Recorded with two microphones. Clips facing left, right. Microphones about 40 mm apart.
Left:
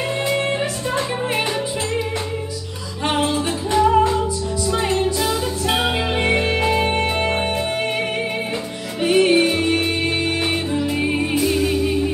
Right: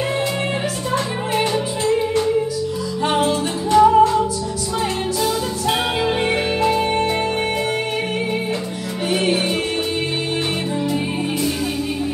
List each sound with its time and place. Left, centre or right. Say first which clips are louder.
0.9 s music: right 1 dB; left
3.1 s music: even; centre
6.0 s music: even; centre
6.5 s music: right 1 dB; centre
9.0 s music: left 5 dB; left